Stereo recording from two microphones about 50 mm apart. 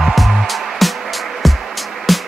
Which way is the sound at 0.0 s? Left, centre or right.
Centre.